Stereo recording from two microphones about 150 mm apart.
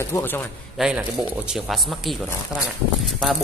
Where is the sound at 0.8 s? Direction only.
5° right (ahead or behind).